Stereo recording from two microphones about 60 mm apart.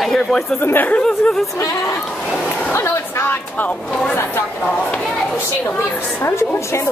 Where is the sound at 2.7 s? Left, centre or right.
Left.